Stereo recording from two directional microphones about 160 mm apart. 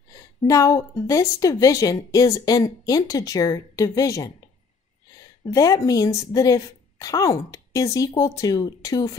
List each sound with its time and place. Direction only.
0.1 s a woman's voice: 20° left (ahead or behind)
5.4 s a woman's voice: 20° left (ahead or behind)